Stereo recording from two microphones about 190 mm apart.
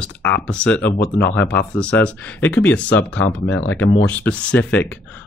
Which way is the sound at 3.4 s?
90° left.